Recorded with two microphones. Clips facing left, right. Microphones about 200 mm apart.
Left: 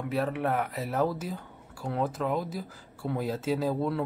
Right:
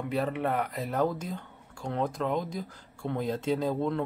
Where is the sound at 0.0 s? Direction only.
Centre (ahead or behind).